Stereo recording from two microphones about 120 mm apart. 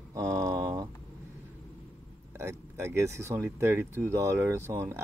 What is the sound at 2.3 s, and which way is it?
Speech, 20° right (ahead or behind).